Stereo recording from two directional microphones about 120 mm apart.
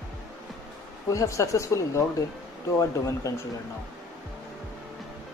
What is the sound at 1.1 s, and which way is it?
Speech, 25° left (ahead or behind).